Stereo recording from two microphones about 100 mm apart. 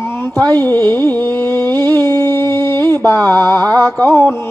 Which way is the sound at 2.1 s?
25° left (ahead or behind).